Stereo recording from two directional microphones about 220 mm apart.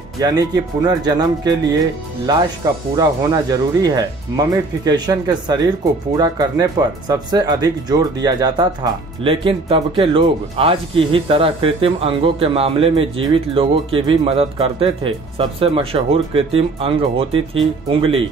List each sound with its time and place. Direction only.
0.2 s speech: 15° right (ahead or behind)